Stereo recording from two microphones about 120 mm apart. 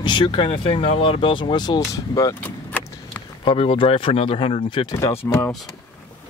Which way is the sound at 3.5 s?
50° left (ahead or behind).